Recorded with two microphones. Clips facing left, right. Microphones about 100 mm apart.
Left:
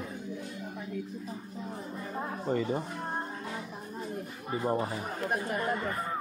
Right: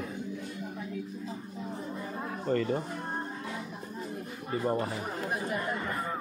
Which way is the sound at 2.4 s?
10° left (ahead or behind).